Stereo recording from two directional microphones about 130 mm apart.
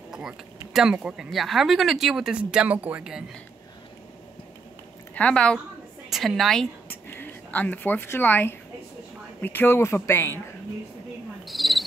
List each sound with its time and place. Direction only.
0.1 s speech: 5° right (ahead or behind)
5.1 s speech: 10° left (ahead or behind)
6.9 s speech: 15° left (ahead or behind)
11.4 s cricket: centre (ahead or behind)